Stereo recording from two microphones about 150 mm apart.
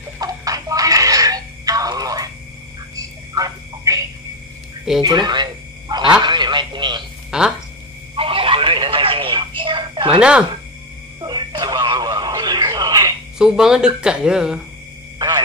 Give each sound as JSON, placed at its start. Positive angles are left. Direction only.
{"t": 0.2, "sound": "a sound", "side_deg": -25}
{"t": 5.0, "sound": "telephone", "side_deg": -30}
{"t": 7.2, "sound": "speech", "side_deg": -5}
{"t": 8.2, "sound": "telephone", "side_deg": -35}
{"t": 11.1, "sound": "radio", "side_deg": -30}
{"t": 13.4, "sound": "speech", "side_deg": -5}
{"t": 15.1, "sound": "a sound", "side_deg": -25}